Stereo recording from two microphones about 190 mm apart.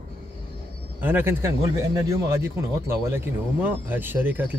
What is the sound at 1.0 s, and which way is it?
A man's voice, 10° right (ahead or behind).